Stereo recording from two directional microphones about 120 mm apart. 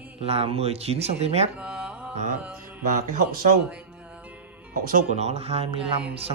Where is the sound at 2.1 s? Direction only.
90° right.